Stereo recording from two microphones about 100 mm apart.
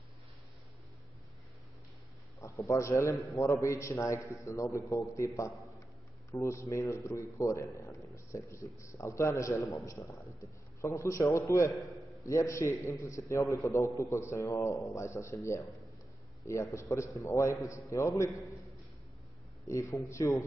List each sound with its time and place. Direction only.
2.4 s a man's voice: 30° left (ahead or behind)
5.5 s a man's voice: centre (ahead or behind)
6.3 s a man's voice: 30° left (ahead or behind)
11.9 s a sound: centre (ahead or behind)
12.2 s a man's voice: 30° left (ahead or behind)
19.6 s a man's voice: 30° left (ahead or behind)